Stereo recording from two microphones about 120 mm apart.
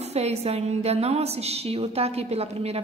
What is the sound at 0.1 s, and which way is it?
A woman's voice, 60° right (ahead or behind).